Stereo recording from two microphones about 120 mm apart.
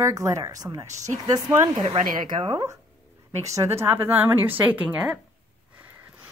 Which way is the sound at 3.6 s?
20° right (ahead or behind).